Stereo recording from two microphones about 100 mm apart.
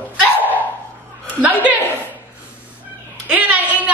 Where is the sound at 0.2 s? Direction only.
15° right (ahead or behind).